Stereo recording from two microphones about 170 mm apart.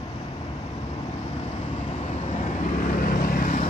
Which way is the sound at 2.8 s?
55° left (ahead or behind).